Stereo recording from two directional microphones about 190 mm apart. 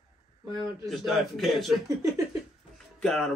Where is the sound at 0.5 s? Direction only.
20° right (ahead or behind).